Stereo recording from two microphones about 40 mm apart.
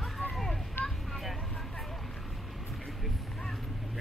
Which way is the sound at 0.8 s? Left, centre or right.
Left.